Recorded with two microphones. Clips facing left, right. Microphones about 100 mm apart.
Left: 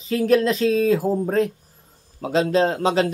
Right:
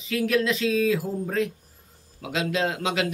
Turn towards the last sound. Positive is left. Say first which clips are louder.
# left 6 dB
turn(degrees=35)  # may be behind; listen again after turning